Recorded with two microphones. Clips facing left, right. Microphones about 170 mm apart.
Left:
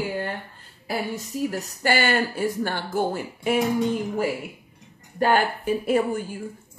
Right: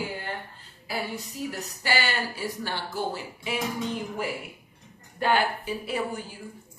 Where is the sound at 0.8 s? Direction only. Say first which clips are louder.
Left 4 dB; 50° left (ahead or behind).